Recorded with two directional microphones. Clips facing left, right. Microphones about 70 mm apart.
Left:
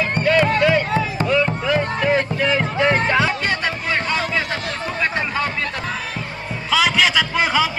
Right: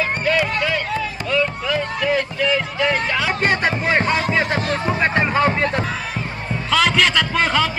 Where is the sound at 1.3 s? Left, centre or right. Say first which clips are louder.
Left 1 dB; centre.